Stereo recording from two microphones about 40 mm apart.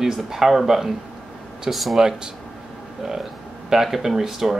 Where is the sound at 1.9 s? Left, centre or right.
Centre.